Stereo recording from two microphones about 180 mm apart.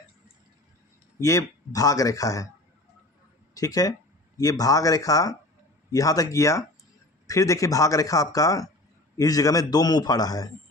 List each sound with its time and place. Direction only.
1.2 s speech: 20° left (ahead or behind)
3.5 s speech: 20° left (ahead or behind)